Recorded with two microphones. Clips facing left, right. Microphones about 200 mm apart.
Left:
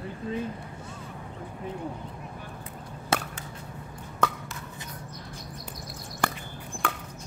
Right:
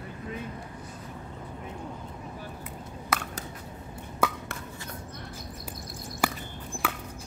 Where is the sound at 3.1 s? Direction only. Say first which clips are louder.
Left 3 dB; 30° left (ahead or behind).